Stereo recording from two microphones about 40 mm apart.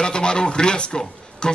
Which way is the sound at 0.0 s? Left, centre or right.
Left.